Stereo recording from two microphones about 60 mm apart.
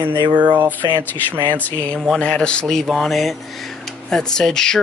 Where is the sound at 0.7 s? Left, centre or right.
Left.